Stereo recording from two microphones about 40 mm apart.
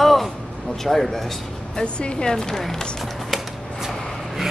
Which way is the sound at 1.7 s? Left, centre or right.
Left.